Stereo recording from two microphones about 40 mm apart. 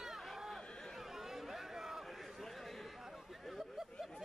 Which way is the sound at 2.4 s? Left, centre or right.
Centre.